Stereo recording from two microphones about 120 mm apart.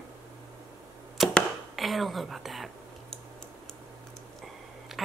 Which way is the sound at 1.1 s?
Centre (ahead or behind).